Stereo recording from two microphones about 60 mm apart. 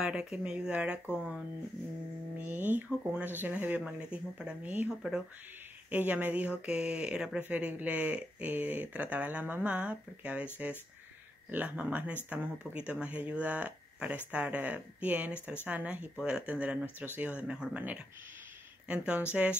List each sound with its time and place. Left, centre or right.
0.0 s speech: centre
3.8 s speech: centre
7.4 s speech: right
16.2 s speech: centre; by 17.3 s right
17.3 s speech: centre